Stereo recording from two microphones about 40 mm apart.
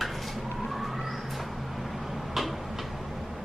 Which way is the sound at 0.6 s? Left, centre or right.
Centre.